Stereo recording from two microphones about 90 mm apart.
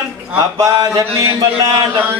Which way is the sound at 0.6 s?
45° right (ahead or behind).